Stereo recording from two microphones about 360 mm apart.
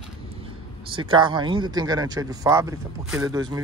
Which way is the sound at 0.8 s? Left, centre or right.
Centre.